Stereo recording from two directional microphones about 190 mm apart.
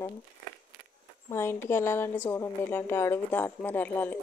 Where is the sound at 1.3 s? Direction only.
15° left (ahead or behind).